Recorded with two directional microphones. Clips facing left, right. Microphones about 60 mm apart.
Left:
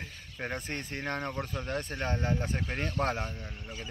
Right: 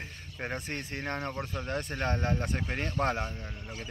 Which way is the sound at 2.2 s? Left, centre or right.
Right.